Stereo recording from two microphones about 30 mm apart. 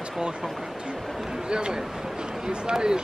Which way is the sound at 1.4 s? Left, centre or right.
Right.